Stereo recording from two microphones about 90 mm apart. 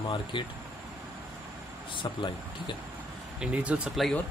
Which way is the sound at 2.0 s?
65° left (ahead or behind).